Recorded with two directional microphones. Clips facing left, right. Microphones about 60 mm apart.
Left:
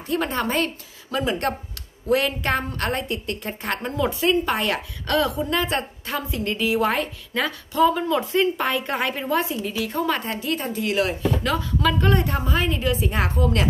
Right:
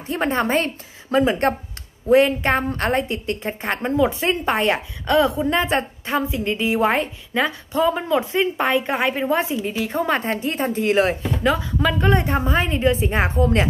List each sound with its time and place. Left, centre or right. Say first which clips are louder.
0.1 s a woman's voice: right 3 dB; right
11.4 s a woman's voice: right 6 dB; centre